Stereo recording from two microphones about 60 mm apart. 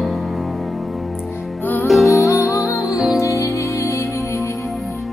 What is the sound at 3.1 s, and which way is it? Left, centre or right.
Music, left.